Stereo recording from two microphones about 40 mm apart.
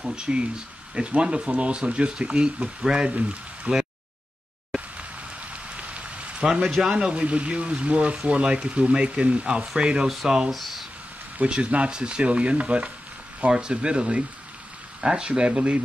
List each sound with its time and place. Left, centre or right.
0.0 s speech: right
2.8 s speech: centre
3.2 s speech: right
5.5 s rain on surface: right
6.4 s speech: centre
10.5 s speech: centre
11.4 s speech: right